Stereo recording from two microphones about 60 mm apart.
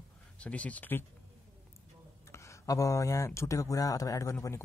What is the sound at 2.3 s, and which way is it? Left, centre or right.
Speech, left.